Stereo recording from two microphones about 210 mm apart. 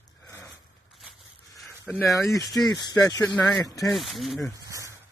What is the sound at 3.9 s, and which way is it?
Speech, centre (ahead or behind).